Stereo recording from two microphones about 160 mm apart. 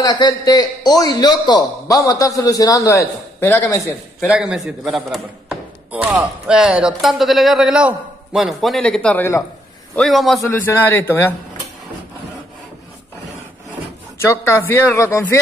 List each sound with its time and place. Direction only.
0.0 s a man's voice: 25° left (ahead or behind)
4.2 s a man's voice: 5° right (ahead or behind); by 9.4 s 10° left (ahead or behind)
9.9 s a man's voice: centre (ahead or behind)
10.4 s speech: 15° left (ahead or behind)
14.2 s speech: 15° left (ahead or behind)